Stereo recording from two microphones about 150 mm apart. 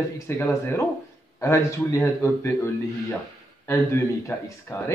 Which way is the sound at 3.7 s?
20° left (ahead or behind).